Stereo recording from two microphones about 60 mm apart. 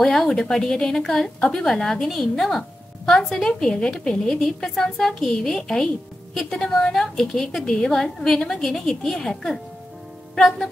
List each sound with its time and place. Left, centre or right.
0.0 s a woman's voice: centre